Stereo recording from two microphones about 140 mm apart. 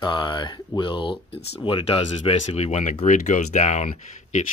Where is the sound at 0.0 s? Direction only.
35° left (ahead or behind).